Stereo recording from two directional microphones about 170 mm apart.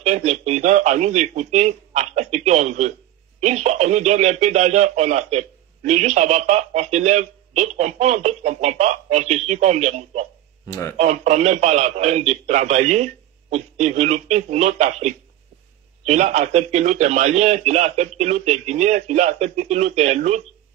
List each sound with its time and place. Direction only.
0.0 s speech: 40° right (ahead or behind)
10.7 s speech: 15° left (ahead or behind)
11.0 s speech: 40° right (ahead or behind)